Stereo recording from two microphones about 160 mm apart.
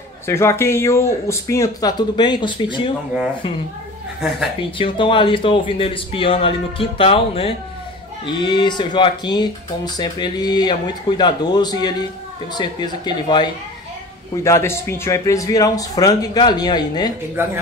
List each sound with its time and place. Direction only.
0.3 s speech: 15° left (ahead or behind)
4.6 s a man's voice: 35° left (ahead or behind)
14.4 s speech: 15° left (ahead or behind)
17.4 s speech: 15° right (ahead or behind)